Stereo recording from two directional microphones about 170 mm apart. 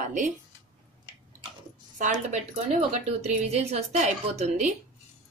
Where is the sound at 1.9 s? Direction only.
45° right (ahead or behind).